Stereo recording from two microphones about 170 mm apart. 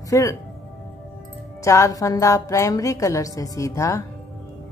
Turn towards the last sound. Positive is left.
turn(degrees=20)  # may be behind; listen again after turning